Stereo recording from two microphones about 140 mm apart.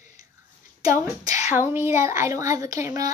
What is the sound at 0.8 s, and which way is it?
Speech, 20° right (ahead or behind).